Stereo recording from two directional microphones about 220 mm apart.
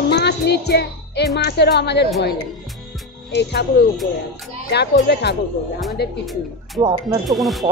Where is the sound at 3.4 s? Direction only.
50° left (ahead or behind).